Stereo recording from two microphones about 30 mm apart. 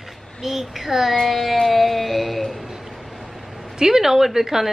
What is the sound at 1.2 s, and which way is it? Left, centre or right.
Music, centre.